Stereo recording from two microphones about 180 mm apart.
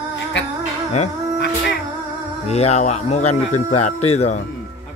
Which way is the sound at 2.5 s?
35° left (ahead or behind).